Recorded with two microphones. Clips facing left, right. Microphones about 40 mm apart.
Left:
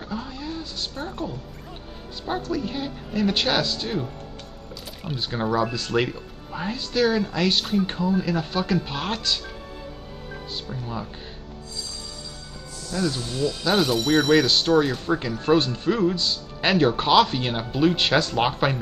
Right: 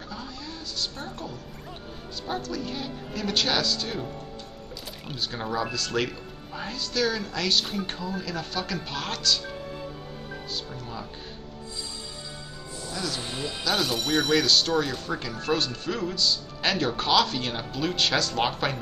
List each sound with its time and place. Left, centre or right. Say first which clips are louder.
0.1 s a sound: left 8 dB; left
2.2 s speech: left 5 dB; centre
5.1 s speech: left 6 dB; centre
10.5 s speech: left 5 dB; centre
13.1 s speech: left 6 dB; right
13.7 s speech: left 5 dB; centre
14.4 s speech: left 4 dB; left